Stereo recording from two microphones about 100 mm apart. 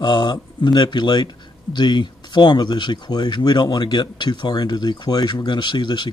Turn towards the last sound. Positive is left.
turn(degrees=50)  # may be behind; listen again after turning